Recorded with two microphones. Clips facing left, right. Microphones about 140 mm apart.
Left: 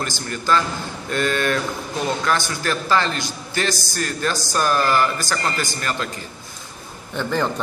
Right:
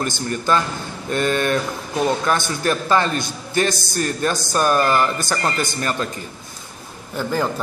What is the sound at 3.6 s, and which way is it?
Speech, 55° right (ahead or behind).